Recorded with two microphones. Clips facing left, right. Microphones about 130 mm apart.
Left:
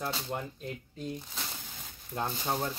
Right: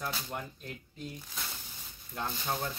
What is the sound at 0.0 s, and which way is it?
Speech, 25° left (ahead or behind).